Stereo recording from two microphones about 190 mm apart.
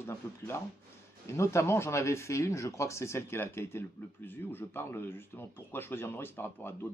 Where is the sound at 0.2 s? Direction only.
15° left (ahead or behind).